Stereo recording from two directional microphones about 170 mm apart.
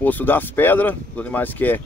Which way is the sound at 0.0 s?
10° left (ahead or behind).